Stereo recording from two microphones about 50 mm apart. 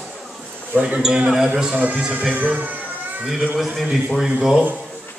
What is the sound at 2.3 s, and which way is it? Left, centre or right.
Speech, right.